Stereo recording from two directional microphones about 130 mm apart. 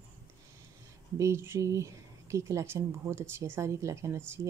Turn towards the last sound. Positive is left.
turn(degrees=-20)  # may be behind; listen again after turning